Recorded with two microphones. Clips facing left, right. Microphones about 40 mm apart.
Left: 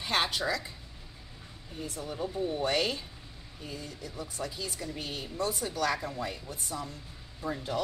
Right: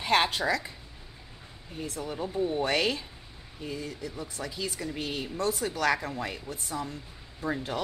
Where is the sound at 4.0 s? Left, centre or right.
Right.